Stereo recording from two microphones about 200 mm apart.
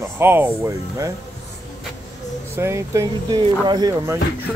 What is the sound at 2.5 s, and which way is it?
Speech, 15° right (ahead or behind).